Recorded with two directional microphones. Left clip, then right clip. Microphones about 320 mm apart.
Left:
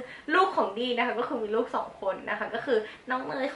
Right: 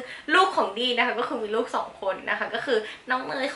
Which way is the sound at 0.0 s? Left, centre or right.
Centre.